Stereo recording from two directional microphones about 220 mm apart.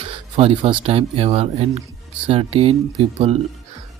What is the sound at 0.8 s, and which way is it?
Speech, 25° right (ahead or behind).